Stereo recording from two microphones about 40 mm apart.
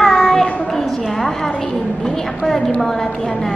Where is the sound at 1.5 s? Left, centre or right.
Left.